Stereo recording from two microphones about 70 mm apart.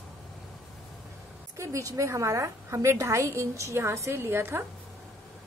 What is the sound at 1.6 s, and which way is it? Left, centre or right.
A woman's voice, right.